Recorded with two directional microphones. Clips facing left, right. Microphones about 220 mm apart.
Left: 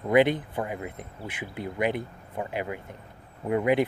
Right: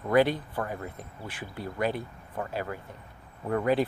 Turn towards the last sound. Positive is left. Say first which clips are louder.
# left 2 dB
turn(degrees=15)  # may be behind; listen again after turning